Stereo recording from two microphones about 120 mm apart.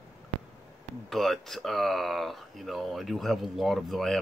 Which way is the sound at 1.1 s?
Centre (ahead or behind).